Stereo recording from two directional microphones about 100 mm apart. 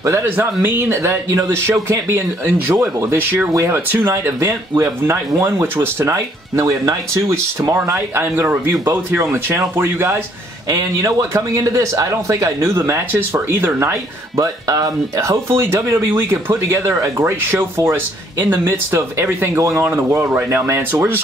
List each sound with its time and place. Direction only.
0.0 s speech: 25° right (ahead or behind)
10.7 s speech: 35° right (ahead or behind)